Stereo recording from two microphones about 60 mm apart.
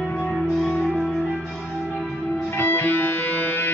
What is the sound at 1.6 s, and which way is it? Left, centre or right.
Church bell, centre.